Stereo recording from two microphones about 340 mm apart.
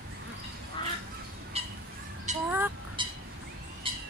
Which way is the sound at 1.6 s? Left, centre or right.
Centre.